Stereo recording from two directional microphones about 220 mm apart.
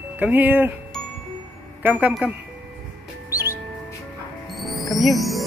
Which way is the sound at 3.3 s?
10° right (ahead or behind).